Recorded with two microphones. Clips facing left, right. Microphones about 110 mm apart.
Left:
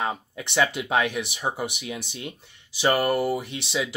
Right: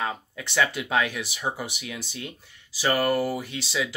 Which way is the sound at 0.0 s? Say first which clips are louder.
Left 2 dB; 20° left (ahead or behind).